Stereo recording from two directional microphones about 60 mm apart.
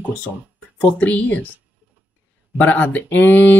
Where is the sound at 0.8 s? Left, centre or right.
Left.